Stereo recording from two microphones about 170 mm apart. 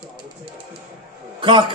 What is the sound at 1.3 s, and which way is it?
Speech, 30° right (ahead or behind).